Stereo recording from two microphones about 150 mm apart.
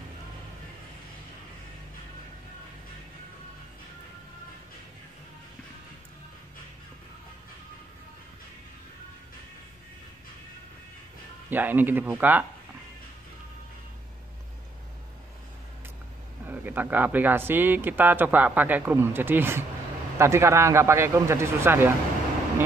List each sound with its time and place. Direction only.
11.5 s a man's voice: 10° right (ahead or behind)
16.4 s a man's voice: 10° right (ahead or behind)